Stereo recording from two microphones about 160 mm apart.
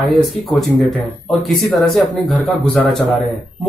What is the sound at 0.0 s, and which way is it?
Speech, centre (ahead or behind).